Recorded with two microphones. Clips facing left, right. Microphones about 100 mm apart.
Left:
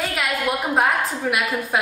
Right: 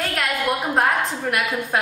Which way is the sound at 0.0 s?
5° left (ahead or behind).